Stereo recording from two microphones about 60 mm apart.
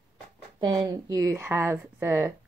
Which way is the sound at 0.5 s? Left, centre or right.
Right.